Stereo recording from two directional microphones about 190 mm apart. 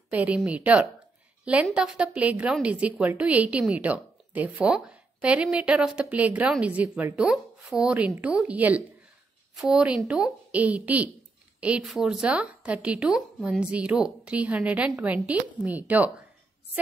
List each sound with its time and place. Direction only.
0.1 s a woman's voice: 5° right (ahead or behind)